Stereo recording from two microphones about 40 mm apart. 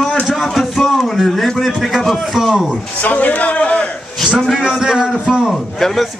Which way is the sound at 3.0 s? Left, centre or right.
Left.